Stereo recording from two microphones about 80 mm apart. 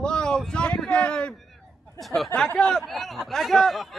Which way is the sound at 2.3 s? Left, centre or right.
Centre.